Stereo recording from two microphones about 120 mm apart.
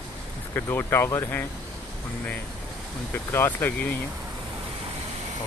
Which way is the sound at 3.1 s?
15° left (ahead or behind).